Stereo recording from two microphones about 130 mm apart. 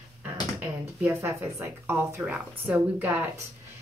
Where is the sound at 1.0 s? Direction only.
20° right (ahead or behind).